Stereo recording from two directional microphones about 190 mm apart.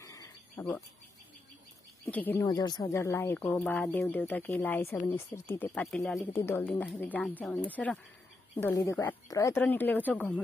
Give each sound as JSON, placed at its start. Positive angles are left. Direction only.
{"t": 0.0, "sound": "cricket", "side_deg": 15}
{"t": 2.0, "sound": "speech", "side_deg": 10}
{"t": 2.4, "sound": "speech", "side_deg": 20}